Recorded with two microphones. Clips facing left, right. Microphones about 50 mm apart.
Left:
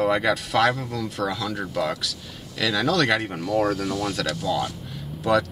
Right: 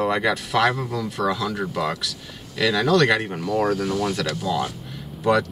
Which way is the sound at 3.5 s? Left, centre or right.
Centre.